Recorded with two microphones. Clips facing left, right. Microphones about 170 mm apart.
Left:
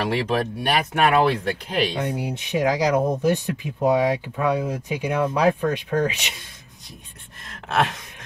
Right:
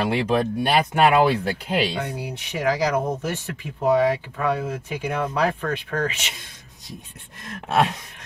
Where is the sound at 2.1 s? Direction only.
20° left (ahead or behind).